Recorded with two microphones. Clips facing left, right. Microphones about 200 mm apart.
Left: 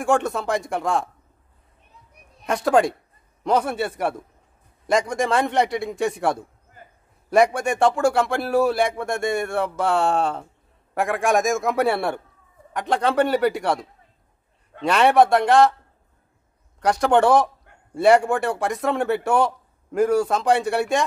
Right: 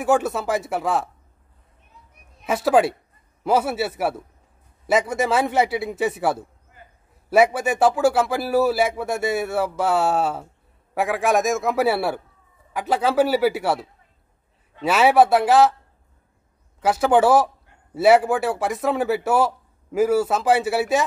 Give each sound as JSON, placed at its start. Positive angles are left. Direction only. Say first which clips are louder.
{"t": 0.0, "sound": "a man's voice", "louder": "right 1 dB", "side_deg": -5}
{"t": 2.4, "sound": "a man's voice", "louder": "right 1 dB", "side_deg": -5}
{"t": 6.8, "sound": "a sound", "louder": "left 2 dB", "side_deg": 45}
{"t": 7.2, "sound": "a man's voice", "louder": "right 1 dB", "side_deg": -5}
{"t": 16.8, "sound": "a man's voice", "louder": "right 1 dB", "side_deg": -5}